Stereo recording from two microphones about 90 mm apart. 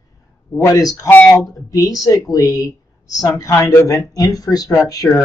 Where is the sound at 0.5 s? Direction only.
40° left (ahead or behind).